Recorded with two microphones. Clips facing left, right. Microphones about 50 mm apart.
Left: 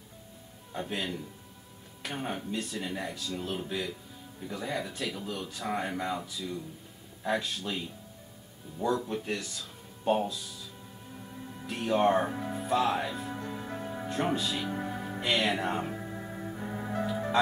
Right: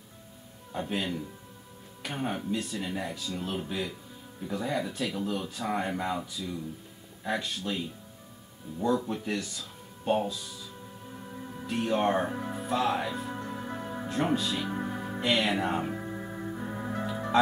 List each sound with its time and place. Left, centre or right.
0.7 s speech: centre
11.3 s music: right
11.6 s speech: centre
13.4 s music: right
14.0 s music: centre